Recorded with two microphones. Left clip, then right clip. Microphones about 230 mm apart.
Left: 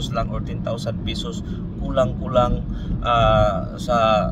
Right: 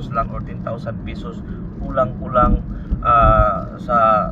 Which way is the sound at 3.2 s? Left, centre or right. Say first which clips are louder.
Even; centre.